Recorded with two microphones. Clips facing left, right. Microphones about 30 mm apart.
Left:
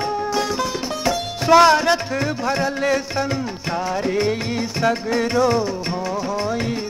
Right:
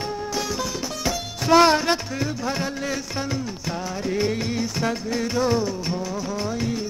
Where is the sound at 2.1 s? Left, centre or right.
Left.